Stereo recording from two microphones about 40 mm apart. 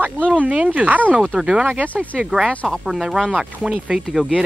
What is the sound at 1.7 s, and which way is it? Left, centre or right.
Speech, right.